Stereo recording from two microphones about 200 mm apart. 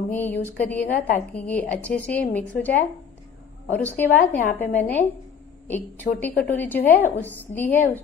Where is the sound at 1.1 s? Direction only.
10° left (ahead or behind).